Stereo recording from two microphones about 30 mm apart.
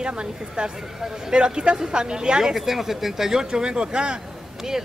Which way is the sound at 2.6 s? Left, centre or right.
Centre.